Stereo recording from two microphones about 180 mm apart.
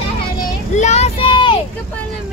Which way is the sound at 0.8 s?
40° left (ahead or behind).